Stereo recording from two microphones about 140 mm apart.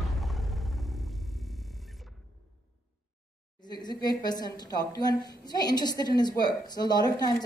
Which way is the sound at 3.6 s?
30° left (ahead or behind).